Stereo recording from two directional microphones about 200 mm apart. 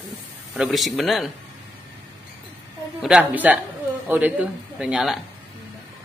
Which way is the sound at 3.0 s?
5° right (ahead or behind).